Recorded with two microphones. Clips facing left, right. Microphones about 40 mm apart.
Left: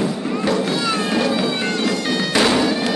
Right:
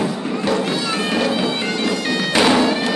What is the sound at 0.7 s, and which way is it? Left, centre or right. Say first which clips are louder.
Music: left 1 dB; centre.